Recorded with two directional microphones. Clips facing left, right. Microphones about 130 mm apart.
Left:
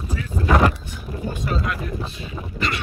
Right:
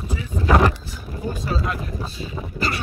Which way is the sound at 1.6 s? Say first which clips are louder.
Even; 30° right (ahead or behind).